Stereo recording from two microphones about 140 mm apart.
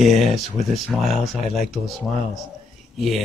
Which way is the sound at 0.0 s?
Centre (ahead or behind).